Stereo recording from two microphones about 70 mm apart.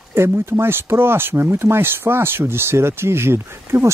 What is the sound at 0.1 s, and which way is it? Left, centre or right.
Speech, right.